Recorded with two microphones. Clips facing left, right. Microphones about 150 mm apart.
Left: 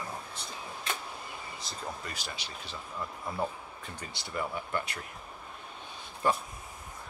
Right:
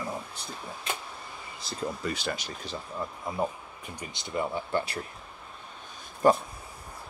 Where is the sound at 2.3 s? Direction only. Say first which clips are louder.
Right 6 dB; 40° right (ahead or behind).